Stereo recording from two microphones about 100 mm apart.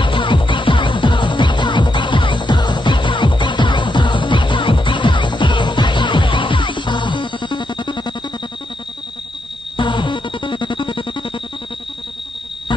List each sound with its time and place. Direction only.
0.0 s music: 55° left (ahead or behind)
9.8 s music: 50° left (ahead or behind)